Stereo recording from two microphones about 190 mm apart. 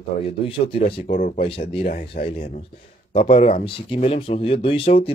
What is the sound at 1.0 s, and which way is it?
Speech, 45° left (ahead or behind).